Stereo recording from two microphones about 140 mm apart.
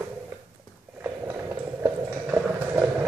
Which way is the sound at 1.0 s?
15° right (ahead or behind).